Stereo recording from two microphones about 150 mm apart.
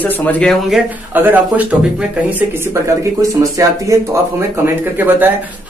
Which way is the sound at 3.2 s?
20° right (ahead or behind).